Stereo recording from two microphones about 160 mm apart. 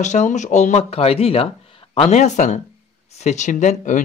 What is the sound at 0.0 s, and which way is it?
Speech, 50° left (ahead or behind).